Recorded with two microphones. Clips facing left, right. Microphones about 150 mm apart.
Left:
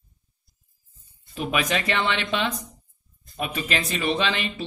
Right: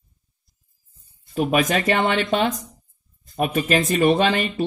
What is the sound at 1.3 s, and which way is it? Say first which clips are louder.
Speech: right 6 dB; 45° right (ahead or behind).